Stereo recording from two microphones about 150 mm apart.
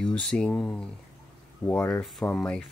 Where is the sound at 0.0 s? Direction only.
5° left (ahead or behind).